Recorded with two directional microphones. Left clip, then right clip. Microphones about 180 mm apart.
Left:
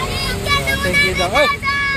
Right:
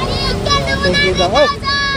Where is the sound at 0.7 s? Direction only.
30° right (ahead or behind).